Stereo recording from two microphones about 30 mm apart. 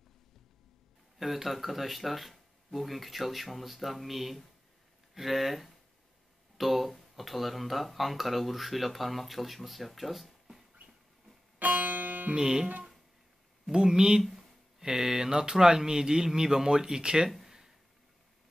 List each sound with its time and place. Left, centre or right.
1.1 s speech: centre
11.6 s music: right
12.4 s speech: right
13.7 s speech: right
17.5 s a sound: centre